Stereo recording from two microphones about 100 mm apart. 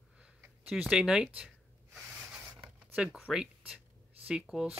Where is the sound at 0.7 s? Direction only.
5° right (ahead or behind).